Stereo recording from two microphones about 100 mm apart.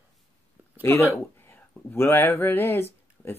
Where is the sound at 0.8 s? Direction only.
25° left (ahead or behind).